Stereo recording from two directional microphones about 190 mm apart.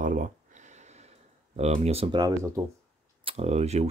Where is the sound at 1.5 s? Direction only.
35° right (ahead or behind).